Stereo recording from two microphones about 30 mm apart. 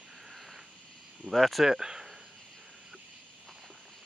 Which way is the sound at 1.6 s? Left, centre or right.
Centre.